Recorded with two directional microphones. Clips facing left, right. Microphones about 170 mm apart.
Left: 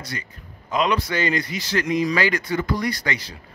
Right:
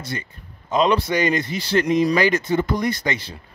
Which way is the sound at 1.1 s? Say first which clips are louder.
Right 3 dB; 20° right (ahead or behind).